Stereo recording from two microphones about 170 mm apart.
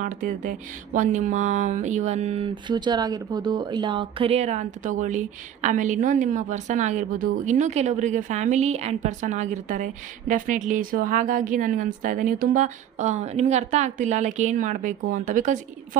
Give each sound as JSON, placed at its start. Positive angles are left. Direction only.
{"t": 0.0, "sound": "speech", "side_deg": -50}